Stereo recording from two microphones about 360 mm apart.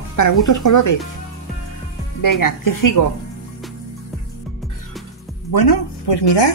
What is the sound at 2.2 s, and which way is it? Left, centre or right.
Speech, left.